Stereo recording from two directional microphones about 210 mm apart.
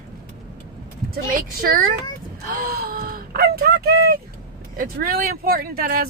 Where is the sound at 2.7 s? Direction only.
45° right (ahead or behind).